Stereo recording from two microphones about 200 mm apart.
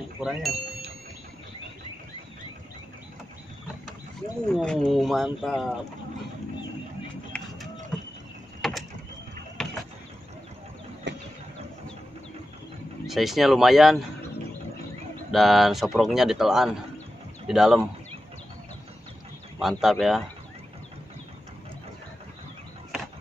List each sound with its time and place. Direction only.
0.2 s speech: 5° right (ahead or behind)
4.5 s speech: 5° left (ahead or behind)
7.3 s music: 5° left (ahead or behind)
8.5 s door: centre (ahead or behind)
9.6 s a sound: 5° left (ahead or behind)
11.1 s a sound: 60° right (ahead or behind)
13.0 s speech: centre (ahead or behind)
15.3 s speech: centre (ahead or behind)
19.6 s speech: centre (ahead or behind)